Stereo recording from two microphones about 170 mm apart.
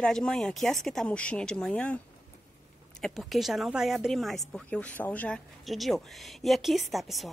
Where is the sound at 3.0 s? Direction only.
Centre (ahead or behind).